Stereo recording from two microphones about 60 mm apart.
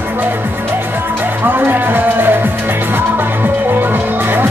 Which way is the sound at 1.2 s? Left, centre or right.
Right.